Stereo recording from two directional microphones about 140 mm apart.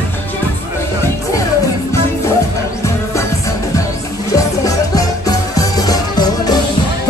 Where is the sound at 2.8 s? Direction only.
20° left (ahead or behind).